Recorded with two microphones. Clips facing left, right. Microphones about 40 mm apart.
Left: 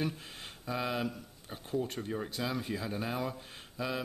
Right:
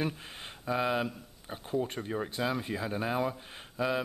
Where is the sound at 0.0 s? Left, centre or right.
Right.